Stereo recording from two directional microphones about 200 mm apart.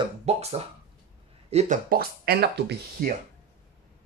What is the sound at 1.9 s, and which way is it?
Speech, 50° right (ahead or behind).